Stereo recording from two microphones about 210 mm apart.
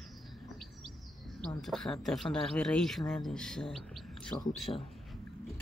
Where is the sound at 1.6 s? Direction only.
Centre (ahead or behind).